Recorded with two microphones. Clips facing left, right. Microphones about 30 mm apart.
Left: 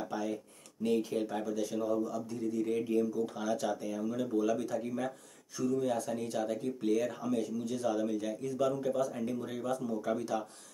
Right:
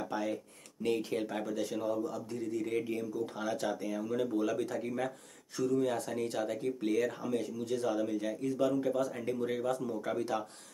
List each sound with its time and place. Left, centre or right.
0.1 s a sound: right
0.8 s speech: right
1.5 s speech: right
2.6 s speech: centre; by 4.8 s right
4.8 s speech: right
5.6 s speech: right